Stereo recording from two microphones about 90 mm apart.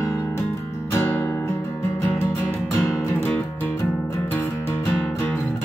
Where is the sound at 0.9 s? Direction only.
25° left (ahead or behind).